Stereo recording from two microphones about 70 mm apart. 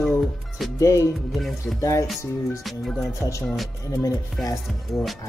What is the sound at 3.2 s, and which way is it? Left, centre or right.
Speech, left.